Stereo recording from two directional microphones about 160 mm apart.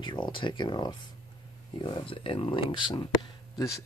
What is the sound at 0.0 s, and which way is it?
Speech, 30° left (ahead or behind).